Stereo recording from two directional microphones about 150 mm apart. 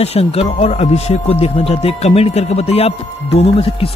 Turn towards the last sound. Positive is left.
turn(degrees=40)  # may be behind; listen again after turning